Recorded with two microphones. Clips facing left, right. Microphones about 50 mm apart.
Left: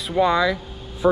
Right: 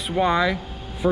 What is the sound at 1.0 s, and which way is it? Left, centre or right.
Speech, centre.